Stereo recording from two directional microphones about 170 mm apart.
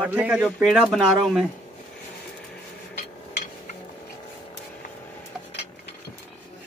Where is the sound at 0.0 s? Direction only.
10° right (ahead or behind).